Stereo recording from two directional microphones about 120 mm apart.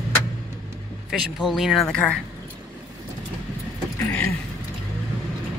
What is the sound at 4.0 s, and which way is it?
Speech, 15° left (ahead or behind).